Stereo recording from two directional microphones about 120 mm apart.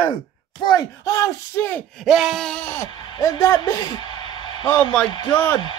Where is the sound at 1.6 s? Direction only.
15° left (ahead or behind).